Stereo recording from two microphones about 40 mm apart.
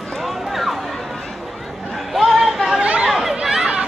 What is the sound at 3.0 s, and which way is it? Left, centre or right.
Chatter, centre.